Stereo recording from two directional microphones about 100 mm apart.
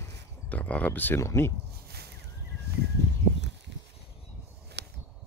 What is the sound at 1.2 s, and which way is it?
Speech, 30° left (ahead or behind).